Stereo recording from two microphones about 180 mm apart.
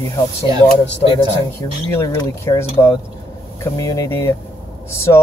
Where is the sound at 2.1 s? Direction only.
15° left (ahead or behind).